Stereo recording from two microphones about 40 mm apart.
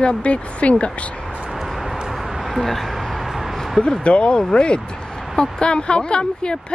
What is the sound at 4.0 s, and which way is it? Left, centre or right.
Speech, left.